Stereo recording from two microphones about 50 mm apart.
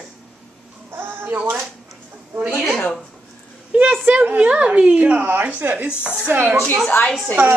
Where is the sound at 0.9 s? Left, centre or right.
Right.